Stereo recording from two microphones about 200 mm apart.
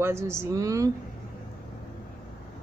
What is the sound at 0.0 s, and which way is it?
Speech, 15° right (ahead or behind).